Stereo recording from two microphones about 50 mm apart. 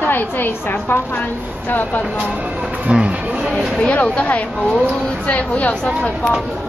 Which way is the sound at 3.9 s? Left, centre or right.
Left.